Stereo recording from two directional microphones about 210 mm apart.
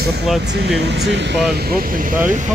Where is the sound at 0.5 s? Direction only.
55° right (ahead or behind).